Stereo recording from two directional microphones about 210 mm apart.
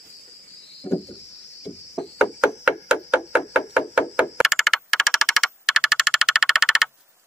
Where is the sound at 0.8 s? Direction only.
15° left (ahead or behind).